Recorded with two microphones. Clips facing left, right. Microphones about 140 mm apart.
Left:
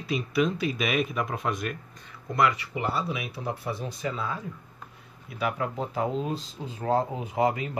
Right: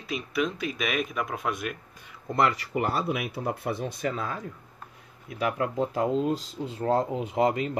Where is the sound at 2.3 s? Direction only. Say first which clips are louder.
Even; 35° right (ahead or behind).